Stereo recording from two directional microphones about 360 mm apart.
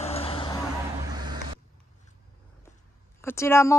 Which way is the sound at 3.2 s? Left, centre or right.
Centre.